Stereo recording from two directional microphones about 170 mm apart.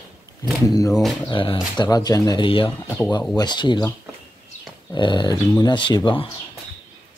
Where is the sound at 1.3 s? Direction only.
30° left (ahead or behind).